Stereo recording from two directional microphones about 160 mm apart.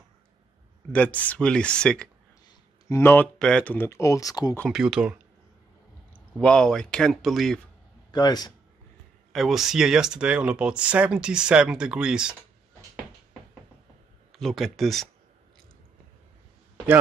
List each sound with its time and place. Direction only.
0.9 s speech: 10° left (ahead or behind)
4.7 s speech: 5° right (ahead or behind)
6.4 s speech: 5° left (ahead or behind)
8.1 s a man's voice: 25° left (ahead or behind)
9.3 s speech: centre (ahead or behind)
14.3 s speech: centre (ahead or behind)